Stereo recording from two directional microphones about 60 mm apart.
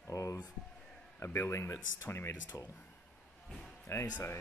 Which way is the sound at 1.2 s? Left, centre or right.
Left.